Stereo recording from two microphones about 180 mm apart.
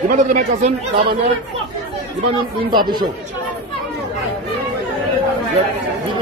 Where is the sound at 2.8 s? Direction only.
25° right (ahead or behind).